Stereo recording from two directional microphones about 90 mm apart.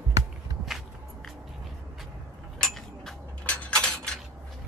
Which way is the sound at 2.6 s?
5° left (ahead or behind).